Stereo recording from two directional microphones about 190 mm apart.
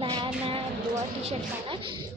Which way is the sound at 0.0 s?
25° right (ahead or behind).